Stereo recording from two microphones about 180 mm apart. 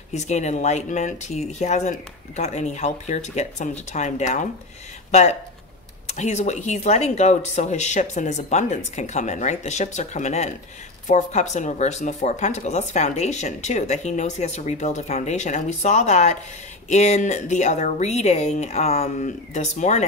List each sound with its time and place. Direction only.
0.1 s speech: 40° left (ahead or behind)